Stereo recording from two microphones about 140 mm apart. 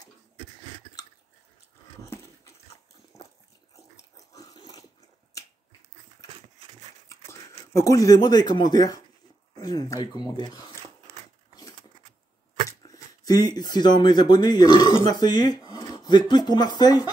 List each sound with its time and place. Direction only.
2.0 s dog: 20° left (ahead or behind)
3.9 s dog: 25° left (ahead or behind)
7.7 s speech: 25° left (ahead or behind)
12.8 s speech: 25° left (ahead or behind)